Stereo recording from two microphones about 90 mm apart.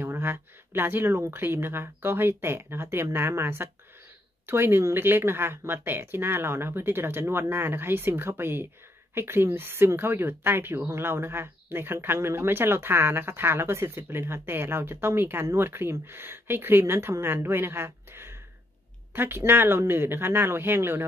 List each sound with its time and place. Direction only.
0.0 s speech: 25° right (ahead or behind)